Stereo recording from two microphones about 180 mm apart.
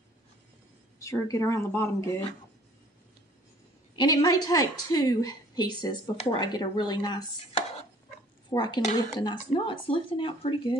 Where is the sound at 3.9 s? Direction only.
25° left (ahead or behind).